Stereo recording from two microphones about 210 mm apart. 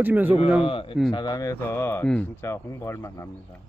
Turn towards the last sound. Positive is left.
turn(degrees=10)  # may be behind; listen again after turning